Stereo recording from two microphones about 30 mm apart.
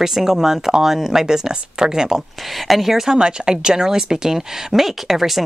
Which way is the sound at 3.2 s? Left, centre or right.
Right.